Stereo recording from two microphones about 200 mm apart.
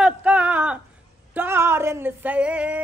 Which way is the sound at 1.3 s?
10° right (ahead or behind).